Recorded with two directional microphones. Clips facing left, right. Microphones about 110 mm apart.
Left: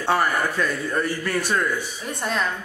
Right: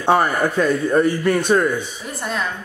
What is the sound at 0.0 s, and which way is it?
A man's voice, 20° right (ahead or behind).